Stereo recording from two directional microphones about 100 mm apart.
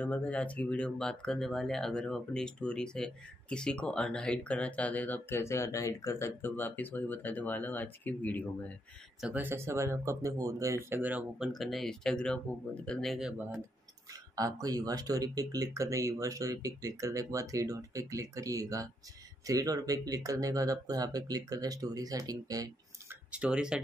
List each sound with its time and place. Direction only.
0.0 s speech: 15° left (ahead or behind)
9.3 s speech: 20° right (ahead or behind)
11.0 s speech: 15° right (ahead or behind)
11.3 s speech: 5° right (ahead or behind)
14.3 s speech: 35° right (ahead or behind)
23.3 s speech: 10° right (ahead or behind)